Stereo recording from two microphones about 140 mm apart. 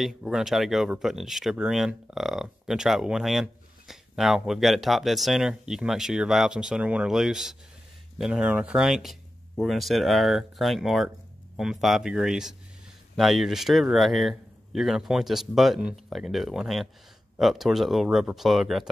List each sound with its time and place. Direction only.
0.0 s speech: 5° right (ahead or behind)